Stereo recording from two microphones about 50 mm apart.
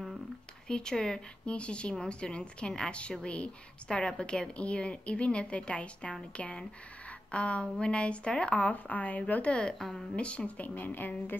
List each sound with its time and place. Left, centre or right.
0.7 s a woman's voice: centre
9.8 s a woman's voice: centre
10.1 s speech: left